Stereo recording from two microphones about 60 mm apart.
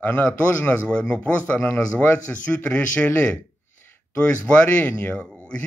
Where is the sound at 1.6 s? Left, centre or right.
Left.